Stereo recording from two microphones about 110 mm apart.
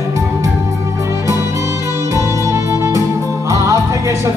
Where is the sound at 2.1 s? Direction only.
30° right (ahead or behind).